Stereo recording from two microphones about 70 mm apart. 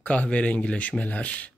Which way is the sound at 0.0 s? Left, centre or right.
Centre.